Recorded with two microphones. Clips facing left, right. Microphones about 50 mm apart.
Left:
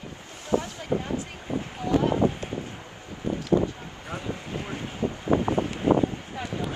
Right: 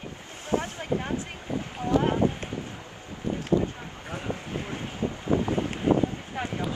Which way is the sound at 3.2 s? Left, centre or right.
Left.